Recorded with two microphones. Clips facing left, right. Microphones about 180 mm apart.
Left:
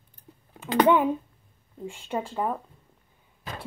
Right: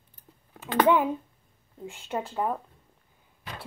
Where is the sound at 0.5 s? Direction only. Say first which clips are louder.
Left 2 dB; centre (ahead or behind).